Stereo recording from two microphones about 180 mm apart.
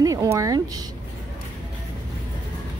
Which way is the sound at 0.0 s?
20° right (ahead or behind).